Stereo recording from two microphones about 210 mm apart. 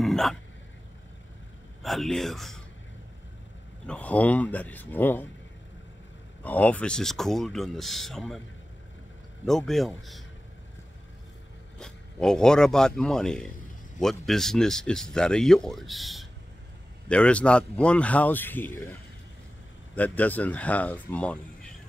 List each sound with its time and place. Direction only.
0.0 s a sound: centre (ahead or behind)
1.8 s speech: centre (ahead or behind)
3.8 s a man's voice: 5° left (ahead or behind)
6.4 s speech: 10° left (ahead or behind)
9.5 s speech: centre (ahead or behind)
11.8 s a man's voice: 5° left (ahead or behind)
20.0 s a man's voice: 10° left (ahead or behind)